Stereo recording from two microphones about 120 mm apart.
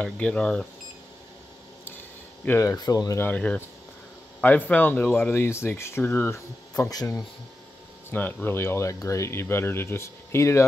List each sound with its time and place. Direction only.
0.0 s speech: 10° left (ahead or behind)
1.9 s a sound: 15° left (ahead or behind)
2.7 s speech: 30° left (ahead or behind)
3.2 s speech: 10° left (ahead or behind); by 7.2 s 30° left (ahead or behind)
8.1 s speech: 15° left (ahead or behind)